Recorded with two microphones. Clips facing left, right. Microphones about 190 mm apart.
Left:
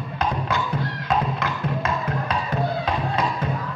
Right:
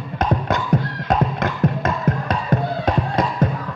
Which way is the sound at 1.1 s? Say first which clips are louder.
Right 4 dB; 45° right (ahead or behind).